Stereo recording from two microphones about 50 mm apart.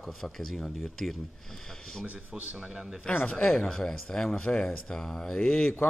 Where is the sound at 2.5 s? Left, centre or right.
Centre.